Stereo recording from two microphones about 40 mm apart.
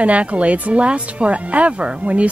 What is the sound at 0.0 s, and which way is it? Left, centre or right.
A woman's voice, right.